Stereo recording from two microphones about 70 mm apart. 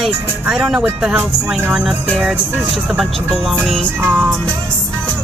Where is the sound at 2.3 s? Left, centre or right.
Centre.